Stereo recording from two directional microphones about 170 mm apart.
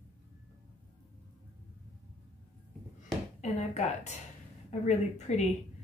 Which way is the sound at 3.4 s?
45° left (ahead or behind).